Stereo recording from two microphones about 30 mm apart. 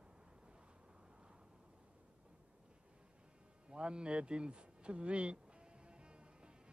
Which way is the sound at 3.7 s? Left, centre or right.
Right.